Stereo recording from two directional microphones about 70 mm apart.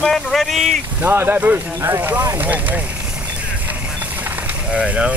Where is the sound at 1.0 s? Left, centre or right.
Right.